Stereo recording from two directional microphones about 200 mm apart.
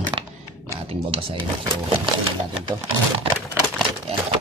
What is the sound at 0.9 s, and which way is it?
Speech, 30° right (ahead or behind).